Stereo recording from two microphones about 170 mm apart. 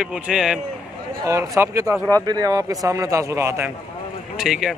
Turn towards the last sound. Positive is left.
turn(degrees=0)  # may be behind; listen again after turning